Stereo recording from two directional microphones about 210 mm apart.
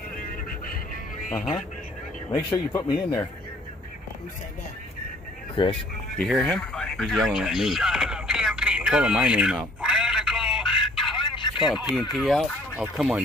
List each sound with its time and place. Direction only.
1.3 s speech: centre (ahead or behind)
2.3 s speech: 20° left (ahead or behind)
5.6 s speech: 20° left (ahead or behind)
6.1 s radio: centre (ahead or behind)
11.1 s telephone: 25° left (ahead or behind)
11.6 s speech: centre (ahead or behind)